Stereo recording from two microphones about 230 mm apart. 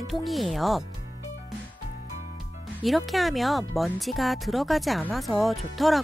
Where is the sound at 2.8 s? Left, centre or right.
Centre.